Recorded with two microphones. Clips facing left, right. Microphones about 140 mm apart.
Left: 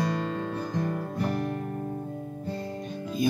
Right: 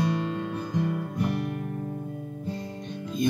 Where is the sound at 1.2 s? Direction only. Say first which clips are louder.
Even; 35° left (ahead or behind).